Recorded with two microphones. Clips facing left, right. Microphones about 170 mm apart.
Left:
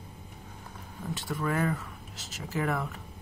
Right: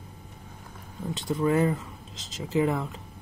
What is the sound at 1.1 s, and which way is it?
Speech, 20° right (ahead or behind).